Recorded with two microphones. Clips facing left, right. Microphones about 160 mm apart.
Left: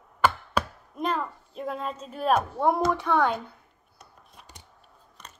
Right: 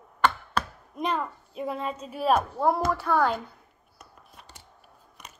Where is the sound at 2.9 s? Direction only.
5° right (ahead or behind).